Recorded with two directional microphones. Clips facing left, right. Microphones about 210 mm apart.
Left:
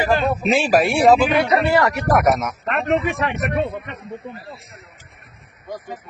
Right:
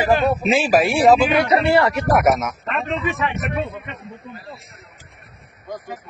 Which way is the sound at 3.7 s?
50° left (ahead or behind).